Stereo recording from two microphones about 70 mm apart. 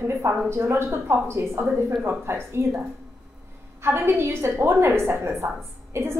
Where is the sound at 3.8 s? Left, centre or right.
Right.